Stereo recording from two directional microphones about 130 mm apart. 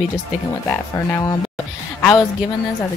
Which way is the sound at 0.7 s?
25° left (ahead or behind).